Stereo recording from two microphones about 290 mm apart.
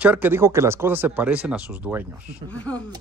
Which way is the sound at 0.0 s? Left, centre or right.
Centre.